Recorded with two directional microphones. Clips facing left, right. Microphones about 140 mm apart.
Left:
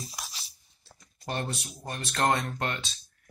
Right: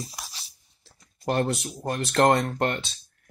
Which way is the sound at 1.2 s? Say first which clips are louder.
Right 9 dB; 65° right (ahead or behind).